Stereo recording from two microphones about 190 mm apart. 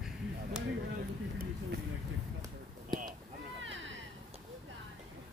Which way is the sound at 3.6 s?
80° right.